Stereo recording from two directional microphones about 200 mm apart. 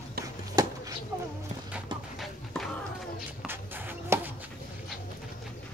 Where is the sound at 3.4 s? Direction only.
10° right (ahead or behind).